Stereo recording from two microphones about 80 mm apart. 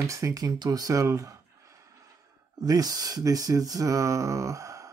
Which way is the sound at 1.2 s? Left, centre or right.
Right.